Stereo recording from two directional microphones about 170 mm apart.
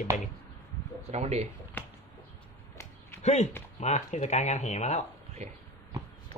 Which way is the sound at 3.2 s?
40° left (ahead or behind).